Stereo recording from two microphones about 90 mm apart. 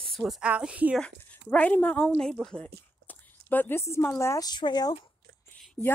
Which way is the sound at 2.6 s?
20° left (ahead or behind).